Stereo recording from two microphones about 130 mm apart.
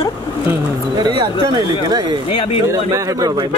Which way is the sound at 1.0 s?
35° right (ahead or behind).